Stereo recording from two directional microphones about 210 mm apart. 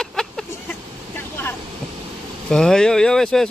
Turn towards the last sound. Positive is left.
turn(degrees=0)  # may be behind; listen again after turning